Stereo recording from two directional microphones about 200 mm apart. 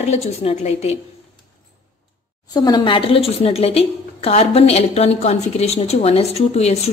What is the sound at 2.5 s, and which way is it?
A woman's voice, 20° left (ahead or behind).